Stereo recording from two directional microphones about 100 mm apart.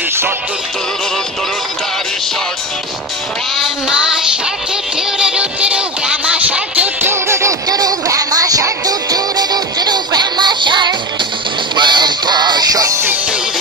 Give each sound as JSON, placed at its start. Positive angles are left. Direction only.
{"t": 3.6, "sound": "child singing", "side_deg": -5}
{"t": 5.2, "sound": "music", "side_deg": -10}